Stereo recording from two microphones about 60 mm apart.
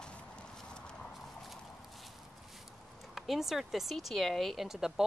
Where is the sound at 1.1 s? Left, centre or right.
Centre.